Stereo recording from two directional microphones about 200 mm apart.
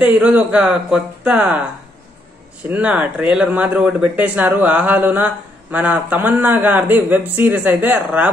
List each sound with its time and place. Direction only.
0.0 s speech: 5° right (ahead or behind)
2.7 s speech: 5° right (ahead or behind)